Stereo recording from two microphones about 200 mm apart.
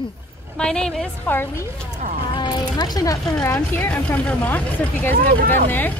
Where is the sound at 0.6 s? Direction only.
5° left (ahead or behind).